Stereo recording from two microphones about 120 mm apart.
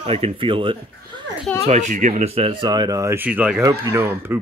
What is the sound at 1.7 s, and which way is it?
Speech, 85° right.